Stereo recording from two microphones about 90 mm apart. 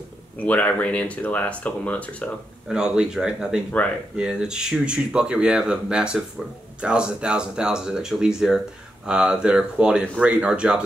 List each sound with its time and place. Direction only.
0.4 s speech: 15° left (ahead or behind)
2.7 s speech: 10° right (ahead or behind)